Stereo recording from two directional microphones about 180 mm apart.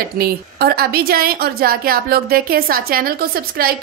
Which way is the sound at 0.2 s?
60° right (ahead or behind).